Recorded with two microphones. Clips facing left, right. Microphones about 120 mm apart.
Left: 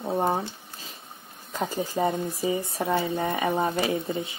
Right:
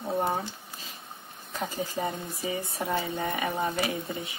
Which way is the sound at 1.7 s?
35° left (ahead or behind).